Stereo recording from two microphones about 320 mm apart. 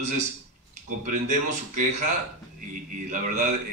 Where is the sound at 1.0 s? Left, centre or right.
Right.